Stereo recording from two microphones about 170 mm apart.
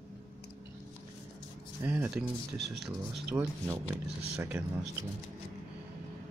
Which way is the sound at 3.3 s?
10° right (ahead or behind).